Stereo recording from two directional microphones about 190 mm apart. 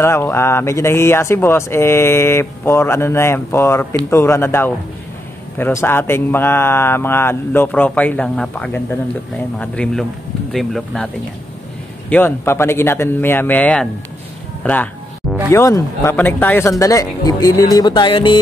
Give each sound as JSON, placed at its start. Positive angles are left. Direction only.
{"t": 0.0, "sound": "speech", "side_deg": 15}
{"t": 12.1, "sound": "speech", "side_deg": 10}